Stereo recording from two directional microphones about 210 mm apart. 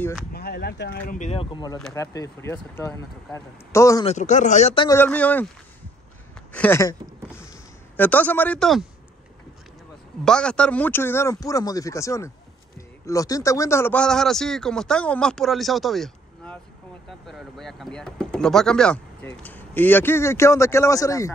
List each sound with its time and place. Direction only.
0.3 s speech: 50° left (ahead or behind); by 4.0 s 15° left (ahead or behind)
4.0 s speech: 35° left (ahead or behind)
4.8 s speech: 10° left (ahead or behind)
6.5 s speech: 10° left (ahead or behind)
10.2 s speech: 5° left (ahead or behind)